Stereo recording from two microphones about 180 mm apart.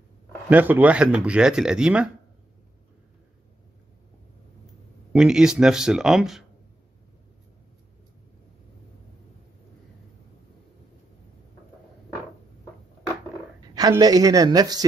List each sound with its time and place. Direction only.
0.5 s speech: 10° right (ahead or behind)
5.1 s speech: 5° right (ahead or behind)
13.7 s speech: 20° right (ahead or behind)